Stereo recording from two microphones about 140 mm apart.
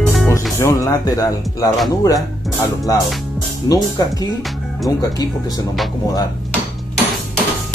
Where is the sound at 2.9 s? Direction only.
25° left (ahead or behind).